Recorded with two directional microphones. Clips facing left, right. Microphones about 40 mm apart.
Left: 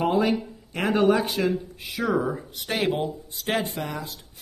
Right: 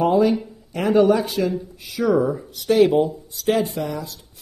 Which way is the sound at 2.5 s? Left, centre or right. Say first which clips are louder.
Right 12 dB; left.